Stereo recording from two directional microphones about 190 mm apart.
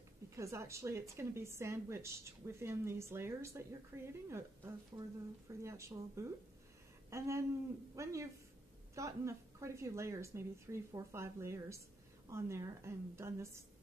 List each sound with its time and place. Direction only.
0.4 s a woman's voice: 15° right (ahead or behind)